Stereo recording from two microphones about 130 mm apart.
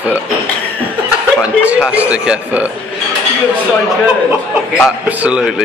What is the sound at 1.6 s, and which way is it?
Speech, 10° right (ahead or behind).